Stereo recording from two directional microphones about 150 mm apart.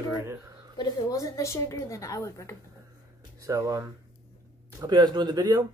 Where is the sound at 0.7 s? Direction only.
25° left (ahead or behind).